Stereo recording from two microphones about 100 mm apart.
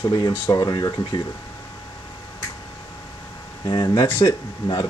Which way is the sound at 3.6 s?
40° left (ahead or behind).